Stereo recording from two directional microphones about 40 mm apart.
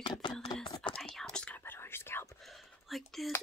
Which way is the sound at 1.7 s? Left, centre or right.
Left.